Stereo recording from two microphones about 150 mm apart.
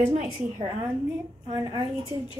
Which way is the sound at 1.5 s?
25° right (ahead or behind).